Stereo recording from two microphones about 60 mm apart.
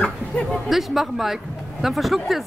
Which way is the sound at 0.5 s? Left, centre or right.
Centre.